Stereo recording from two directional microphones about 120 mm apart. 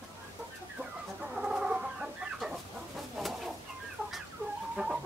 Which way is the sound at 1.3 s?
5° right (ahead or behind).